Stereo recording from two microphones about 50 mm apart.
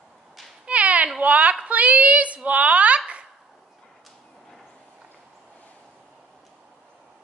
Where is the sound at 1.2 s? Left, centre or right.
Right.